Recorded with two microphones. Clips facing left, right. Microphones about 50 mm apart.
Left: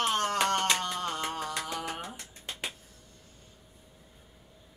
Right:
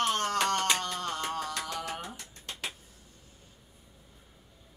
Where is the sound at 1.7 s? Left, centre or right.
Centre.